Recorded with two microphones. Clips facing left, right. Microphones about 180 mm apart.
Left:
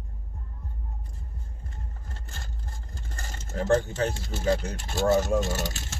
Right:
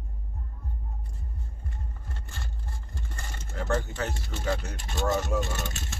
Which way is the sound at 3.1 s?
40° left (ahead or behind).